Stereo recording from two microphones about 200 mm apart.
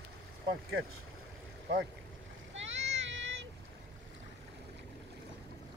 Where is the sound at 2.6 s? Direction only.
65° right (ahead or behind).